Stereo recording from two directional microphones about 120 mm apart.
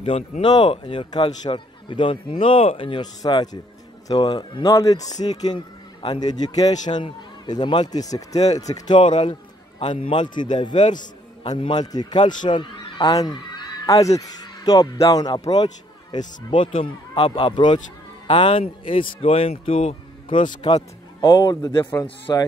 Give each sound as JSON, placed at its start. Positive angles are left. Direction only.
{"t": 0.4, "sound": "a man's voice", "side_deg": 40}
{"t": 4.8, "sound": "a man's voice", "side_deg": 30}
{"t": 16.7, "sound": "a man's voice", "side_deg": 45}